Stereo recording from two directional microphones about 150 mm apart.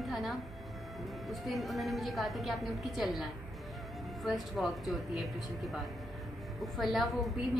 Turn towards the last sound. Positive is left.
turn(degrees=0)  # may be behind; listen again after turning